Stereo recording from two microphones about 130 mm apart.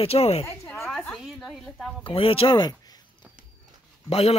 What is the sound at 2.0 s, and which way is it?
Speech, 45° left (ahead or behind).